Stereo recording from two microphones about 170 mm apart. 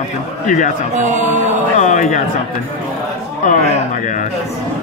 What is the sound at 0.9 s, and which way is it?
Mantra, 45° right (ahead or behind).